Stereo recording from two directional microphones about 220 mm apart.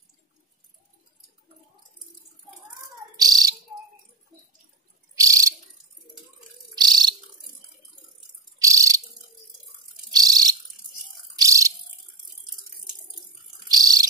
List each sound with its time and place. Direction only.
3.2 s bird: 15° right (ahead or behind)
5.1 s bird: 15° right (ahead or behind)
6.7 s bird: 20° right (ahead or behind)
8.5 s bird: 15° right (ahead or behind)
10.1 s a sound: 15° right (ahead or behind)
13.7 s a sound: 15° right (ahead or behind)